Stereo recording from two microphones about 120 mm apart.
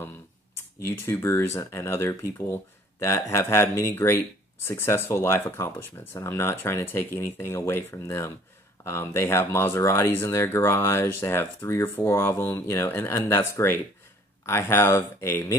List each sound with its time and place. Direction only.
0.6 s speech: 20° left (ahead or behind)